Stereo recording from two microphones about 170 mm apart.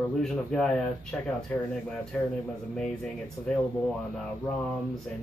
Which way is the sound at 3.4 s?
15° left (ahead or behind).